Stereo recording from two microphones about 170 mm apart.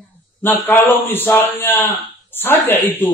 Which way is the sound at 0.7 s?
10° left (ahead or behind).